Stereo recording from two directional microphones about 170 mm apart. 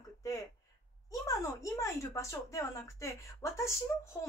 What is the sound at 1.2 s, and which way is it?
A woman's voice, 20° left (ahead or behind).